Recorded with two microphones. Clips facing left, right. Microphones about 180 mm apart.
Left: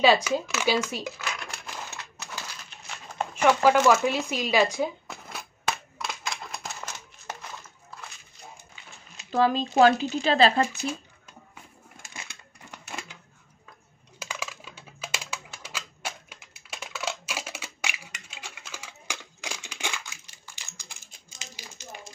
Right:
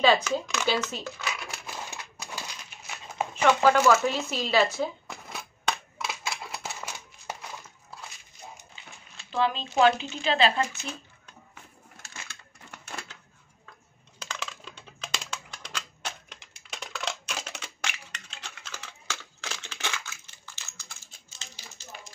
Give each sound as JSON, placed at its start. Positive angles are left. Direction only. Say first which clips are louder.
{"t": 0.0, "sound": "speech", "louder": "left 2 dB", "side_deg": 10}
{"t": 1.2, "sound": "crumpling", "louder": "even", "side_deg": -5}
{"t": 3.4, "sound": "speech", "louder": "left 1 dB", "side_deg": 10}
{"t": 5.0, "sound": "a sound", "louder": "even", "side_deg": 0}
{"t": 9.3, "sound": "speech", "louder": "left 4 dB", "side_deg": 40}
{"t": 12.0, "sound": "a sound", "louder": "left 2 dB", "side_deg": 15}
{"t": 14.2, "sound": "typing", "louder": "left 1 dB", "side_deg": 10}